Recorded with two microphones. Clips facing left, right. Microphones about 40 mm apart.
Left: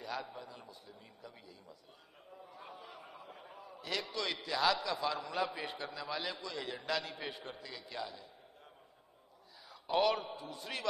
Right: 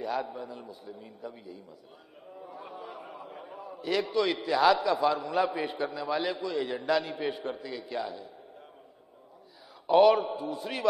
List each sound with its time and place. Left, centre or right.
0.0 s a man's voice: centre
2.3 s a sound: centre
5.1 s a man's voice: centre
9.8 s a man's voice: centre